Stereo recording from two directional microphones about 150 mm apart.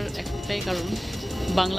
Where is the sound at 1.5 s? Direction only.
Centre (ahead or behind).